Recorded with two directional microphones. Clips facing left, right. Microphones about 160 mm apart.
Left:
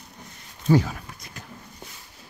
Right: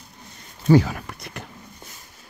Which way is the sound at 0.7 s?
75° right (ahead or behind).